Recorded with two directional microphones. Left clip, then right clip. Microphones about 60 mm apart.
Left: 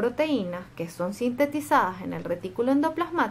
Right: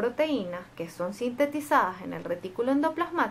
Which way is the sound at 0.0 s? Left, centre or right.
Centre.